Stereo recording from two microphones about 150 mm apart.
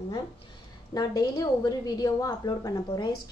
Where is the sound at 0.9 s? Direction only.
25° left (ahead or behind).